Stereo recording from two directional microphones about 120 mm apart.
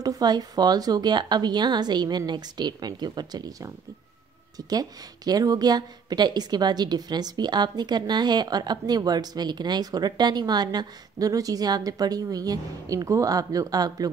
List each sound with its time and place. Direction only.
0.0 s speech: 30° right (ahead or behind)